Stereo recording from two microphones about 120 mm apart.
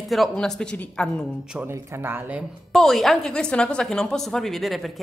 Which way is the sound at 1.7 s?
20° right (ahead or behind).